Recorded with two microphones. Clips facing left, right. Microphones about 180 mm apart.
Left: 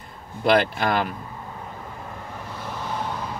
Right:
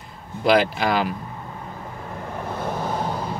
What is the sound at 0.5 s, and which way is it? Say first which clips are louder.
Speech: right 1 dB; 5° right (ahead or behind).